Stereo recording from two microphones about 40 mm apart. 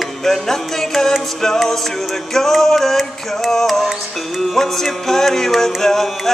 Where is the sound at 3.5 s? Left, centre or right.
Centre.